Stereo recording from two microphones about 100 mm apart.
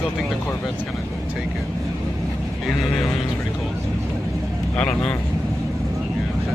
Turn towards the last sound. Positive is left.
turn(degrees=10)  # may be behind; listen again after turning